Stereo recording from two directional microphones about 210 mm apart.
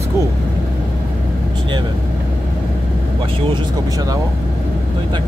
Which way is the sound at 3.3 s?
20° right (ahead or behind).